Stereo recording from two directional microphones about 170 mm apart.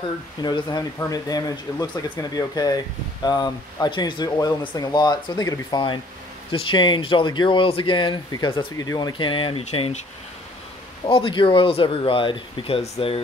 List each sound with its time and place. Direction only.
0.4 s speech: 25° left (ahead or behind)
11.1 s speech: 30° left (ahead or behind)